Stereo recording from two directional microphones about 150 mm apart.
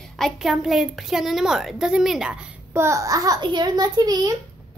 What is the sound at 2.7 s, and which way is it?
A child's voice, 20° right (ahead or behind).